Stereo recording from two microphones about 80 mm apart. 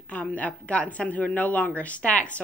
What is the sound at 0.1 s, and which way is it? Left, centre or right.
A woman's voice, centre.